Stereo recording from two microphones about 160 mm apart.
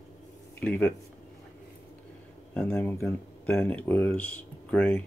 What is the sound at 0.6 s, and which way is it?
Speech, 10° left (ahead or behind).